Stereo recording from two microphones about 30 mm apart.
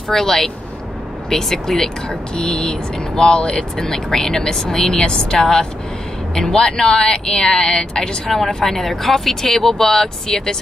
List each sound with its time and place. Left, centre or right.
0.1 s speech: centre
2.7 s speech: left
3.4 s speech: centre
4.8 s speech: left
5.4 s speech: centre
8.3 s speech: centre